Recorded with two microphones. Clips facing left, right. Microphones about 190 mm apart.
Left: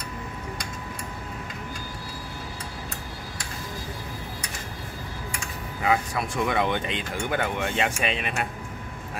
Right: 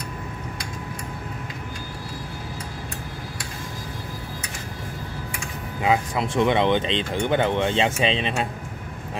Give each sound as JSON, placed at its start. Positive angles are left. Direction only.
{"t": 5.8, "sound": "speech", "side_deg": -20}